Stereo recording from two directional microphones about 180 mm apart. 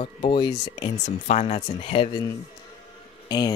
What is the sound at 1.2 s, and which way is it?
Speech, 40° left (ahead or behind).